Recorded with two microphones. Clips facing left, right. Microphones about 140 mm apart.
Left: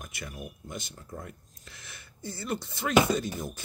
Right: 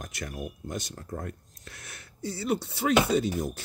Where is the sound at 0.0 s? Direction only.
90° right.